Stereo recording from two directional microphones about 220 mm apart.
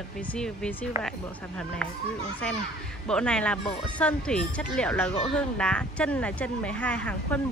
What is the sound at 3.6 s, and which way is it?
Speech, 25° left (ahead or behind).